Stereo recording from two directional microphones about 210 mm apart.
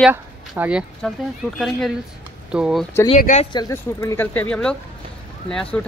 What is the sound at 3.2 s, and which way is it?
Speech, 35° left (ahead or behind).